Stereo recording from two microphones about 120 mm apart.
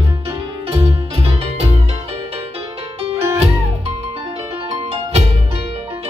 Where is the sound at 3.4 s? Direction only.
60° right (ahead or behind).